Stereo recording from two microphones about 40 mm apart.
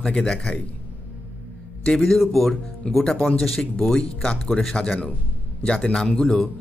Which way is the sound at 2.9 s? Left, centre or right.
Left.